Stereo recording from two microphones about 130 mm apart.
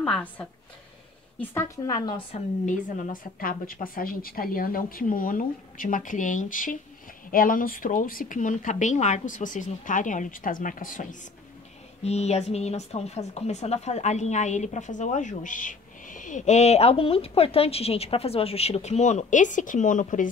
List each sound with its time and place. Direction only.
0.0 s a woman's voice: 10° left (ahead or behind)
1.5 s a woman's voice: 20° left (ahead or behind)
2.0 s speech: 30° left (ahead or behind)
2.3 s a woman's voice: 75° left (ahead or behind)
12.0 s speech: 55° left (ahead or behind); by 20.2 s 80° left